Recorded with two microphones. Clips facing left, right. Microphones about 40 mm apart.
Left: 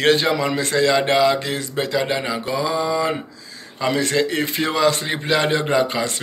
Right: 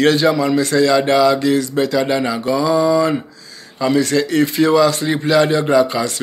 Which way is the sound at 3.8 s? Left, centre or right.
Left.